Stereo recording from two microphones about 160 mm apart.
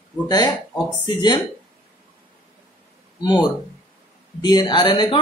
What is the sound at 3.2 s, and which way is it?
A man's voice, 25° left (ahead or behind).